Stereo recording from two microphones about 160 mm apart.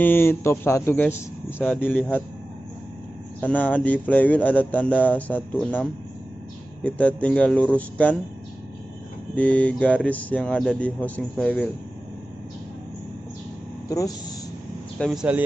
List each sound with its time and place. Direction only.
0.0 s a man's voice: 15° left (ahead or behind)
3.3 s a man's voice: 10° left (ahead or behind)
9.3 s a man's voice: 10° left (ahead or behind)
13.8 s speech: 20° left (ahead or behind)
15.0 s a man's voice: 5° left (ahead or behind)